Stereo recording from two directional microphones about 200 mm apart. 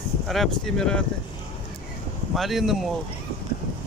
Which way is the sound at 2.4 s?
Centre (ahead or behind).